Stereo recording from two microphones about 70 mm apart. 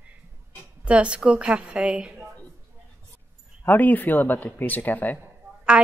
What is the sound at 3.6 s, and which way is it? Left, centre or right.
Speech, left.